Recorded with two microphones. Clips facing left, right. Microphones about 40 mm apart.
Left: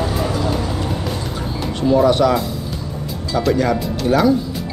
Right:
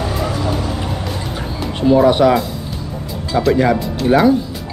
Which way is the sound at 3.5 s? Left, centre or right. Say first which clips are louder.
Right 3 dB; right.